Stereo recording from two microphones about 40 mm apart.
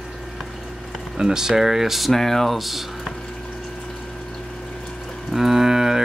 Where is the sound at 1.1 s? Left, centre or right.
Centre.